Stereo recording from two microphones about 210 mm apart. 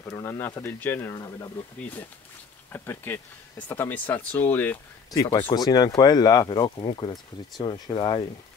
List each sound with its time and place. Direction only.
0.0 s speech: 10° left (ahead or behind)